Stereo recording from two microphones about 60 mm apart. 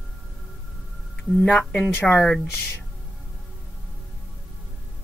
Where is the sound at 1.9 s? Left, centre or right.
Left.